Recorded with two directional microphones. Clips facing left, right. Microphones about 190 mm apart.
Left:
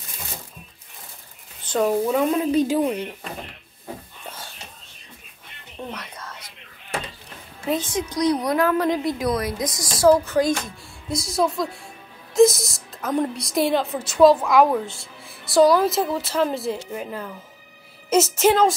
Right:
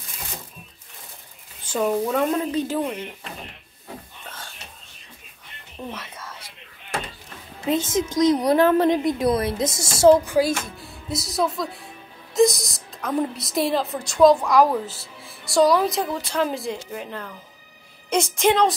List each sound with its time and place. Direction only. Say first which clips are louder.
1.7 s speech: left 2 dB; centre (ahead or behind)
2.3 s speech: left 4 dB; 10° left (ahead or behind)
5.9 s whispering: right 1 dB; 5° right (ahead or behind)
7.7 s a woman's voice: right 3 dB; 25° right (ahead or behind)
10.2 s speech: even; 10° right (ahead or behind)
10.8 s music: left 1 dB; centre (ahead or behind)
12.4 s a woman's voice: left 3 dB; centre (ahead or behind)